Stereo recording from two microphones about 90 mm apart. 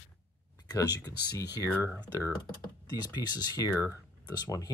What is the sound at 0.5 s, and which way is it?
Speech, 50° left (ahead or behind).